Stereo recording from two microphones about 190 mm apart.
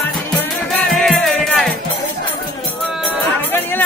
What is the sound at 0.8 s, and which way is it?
Music, 5° left (ahead or behind).